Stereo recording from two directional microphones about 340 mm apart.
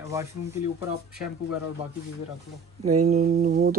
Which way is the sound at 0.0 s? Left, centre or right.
Centre.